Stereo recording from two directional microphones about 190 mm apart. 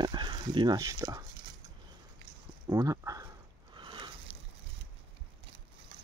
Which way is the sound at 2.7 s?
15° right (ahead or behind).